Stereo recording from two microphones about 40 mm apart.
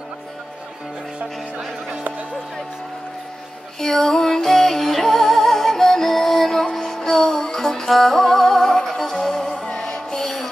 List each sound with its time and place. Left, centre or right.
3.8 s music: centre